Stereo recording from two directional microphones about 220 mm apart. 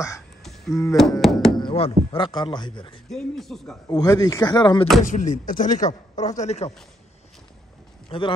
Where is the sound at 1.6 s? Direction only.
25° left (ahead or behind).